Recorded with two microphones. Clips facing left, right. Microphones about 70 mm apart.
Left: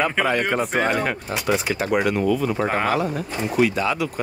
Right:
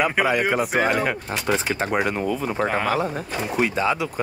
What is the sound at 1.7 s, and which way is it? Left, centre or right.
Speech, right.